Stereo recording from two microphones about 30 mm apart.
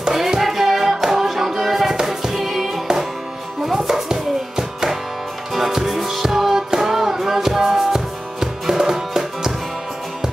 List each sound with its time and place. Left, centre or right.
0.1 s music: centre
3.6 s chopping: centre
5.5 s music: centre